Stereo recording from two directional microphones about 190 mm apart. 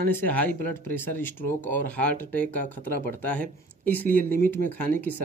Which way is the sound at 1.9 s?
10° left (ahead or behind).